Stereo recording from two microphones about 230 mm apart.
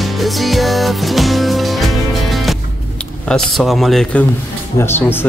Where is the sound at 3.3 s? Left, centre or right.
Centre.